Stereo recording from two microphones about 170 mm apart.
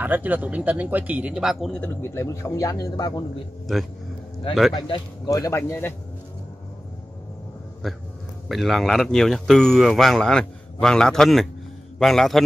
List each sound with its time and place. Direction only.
0.0 s speech: 10° right (ahead or behind); by 3.3 s 25° left (ahead or behind)
4.7 s speech: 25° left (ahead or behind)
7.8 s speech: centre (ahead or behind)